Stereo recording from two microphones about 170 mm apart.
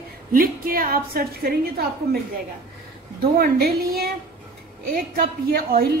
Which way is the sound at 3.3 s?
65° right (ahead or behind).